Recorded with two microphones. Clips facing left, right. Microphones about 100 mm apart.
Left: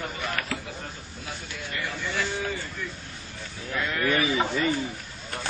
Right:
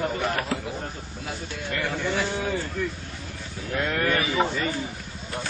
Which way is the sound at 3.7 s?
50° right (ahead or behind).